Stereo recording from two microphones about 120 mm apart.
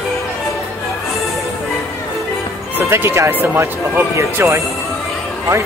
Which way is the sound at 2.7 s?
20° right (ahead or behind).